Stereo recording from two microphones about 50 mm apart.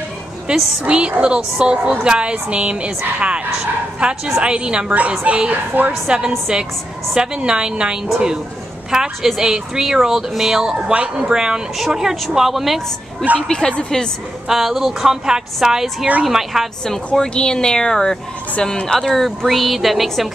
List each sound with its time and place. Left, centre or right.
0.5 s a woman's voice: right
5.7 s a woman's voice: right
6.0 s a woman's voice: centre
10.8 s a woman's voice: right
11.1 s a woman's voice: centre
13.5 s a woman's voice: centre
14.5 s a woman's voice: centre
16.8 s a woman's voice: centre